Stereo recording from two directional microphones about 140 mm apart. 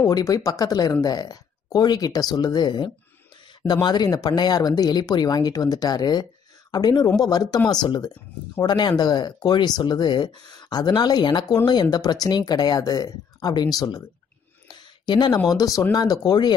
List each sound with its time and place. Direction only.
0.0 s speech: 25° left (ahead or behind)